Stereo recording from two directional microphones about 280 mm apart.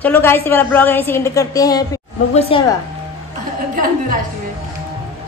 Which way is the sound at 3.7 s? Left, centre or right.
Right.